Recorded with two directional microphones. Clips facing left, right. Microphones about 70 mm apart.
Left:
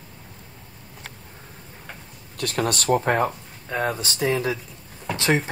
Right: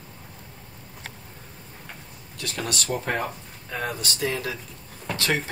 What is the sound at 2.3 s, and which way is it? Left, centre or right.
Speech, left.